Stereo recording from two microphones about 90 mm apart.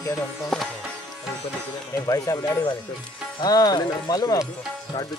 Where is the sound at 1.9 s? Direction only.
40° left (ahead or behind).